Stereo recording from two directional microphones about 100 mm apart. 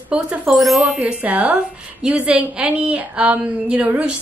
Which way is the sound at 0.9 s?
15° right (ahead or behind).